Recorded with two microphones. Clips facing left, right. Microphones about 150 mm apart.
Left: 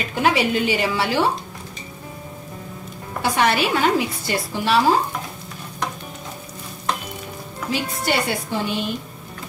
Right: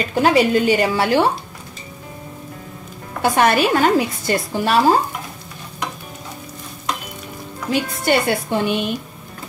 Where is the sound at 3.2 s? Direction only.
50° right (ahead or behind).